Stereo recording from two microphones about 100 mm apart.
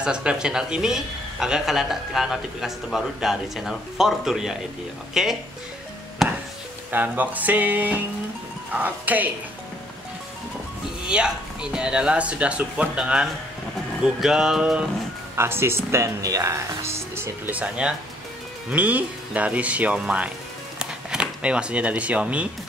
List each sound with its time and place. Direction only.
0.0 s speech: 10° right (ahead or behind)
6.9 s speech: 20° right (ahead or behind)
11.1 s speech: 10° right (ahead or behind)
15.3 s speech: 25° right (ahead or behind)
17.6 s speech: 10° right (ahead or behind)